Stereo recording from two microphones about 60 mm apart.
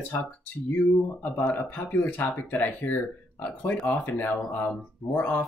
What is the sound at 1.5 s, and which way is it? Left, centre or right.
Speech, left.